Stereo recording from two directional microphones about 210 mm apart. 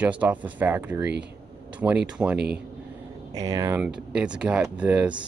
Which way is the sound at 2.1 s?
5° right (ahead or behind).